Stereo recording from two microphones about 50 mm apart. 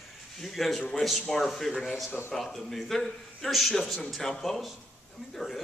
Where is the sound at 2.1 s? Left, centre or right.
Left.